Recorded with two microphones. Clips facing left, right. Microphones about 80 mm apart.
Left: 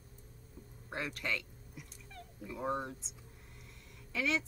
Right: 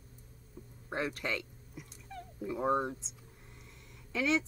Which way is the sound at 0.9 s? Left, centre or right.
Centre.